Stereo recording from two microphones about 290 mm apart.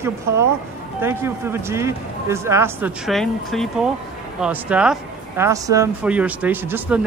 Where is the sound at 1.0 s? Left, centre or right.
Centre.